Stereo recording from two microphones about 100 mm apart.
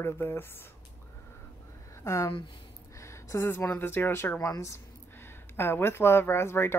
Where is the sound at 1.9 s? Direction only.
30° left (ahead or behind).